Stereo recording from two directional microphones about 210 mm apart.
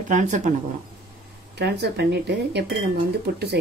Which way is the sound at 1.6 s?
55° right (ahead or behind).